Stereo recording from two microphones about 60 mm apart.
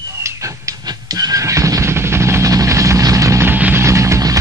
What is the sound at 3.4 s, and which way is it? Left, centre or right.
Music, right.